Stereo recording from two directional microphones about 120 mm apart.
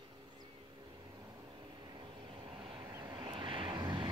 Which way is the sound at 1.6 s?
40° right (ahead or behind).